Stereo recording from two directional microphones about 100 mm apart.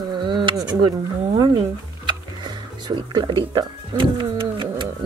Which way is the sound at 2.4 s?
50° right (ahead or behind).